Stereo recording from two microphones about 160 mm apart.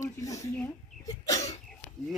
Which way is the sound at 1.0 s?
20° left (ahead or behind).